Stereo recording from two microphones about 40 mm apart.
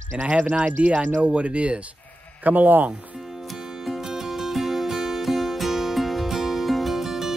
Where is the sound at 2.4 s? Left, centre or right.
Right.